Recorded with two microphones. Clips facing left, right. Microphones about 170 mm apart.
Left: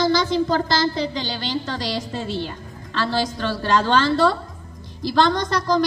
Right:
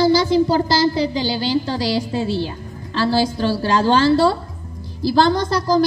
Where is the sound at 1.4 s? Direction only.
35° right (ahead or behind).